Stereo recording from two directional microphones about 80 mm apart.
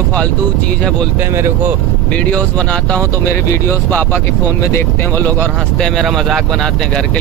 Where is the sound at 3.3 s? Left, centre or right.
Left.